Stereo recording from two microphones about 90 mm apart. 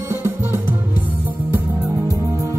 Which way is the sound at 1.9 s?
35° right (ahead or behind).